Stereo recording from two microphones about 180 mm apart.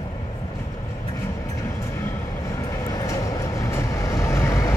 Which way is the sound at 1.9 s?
15° left (ahead or behind).